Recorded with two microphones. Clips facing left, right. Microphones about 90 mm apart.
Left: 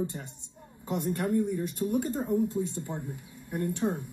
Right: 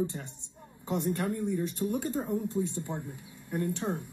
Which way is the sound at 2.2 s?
5° left (ahead or behind).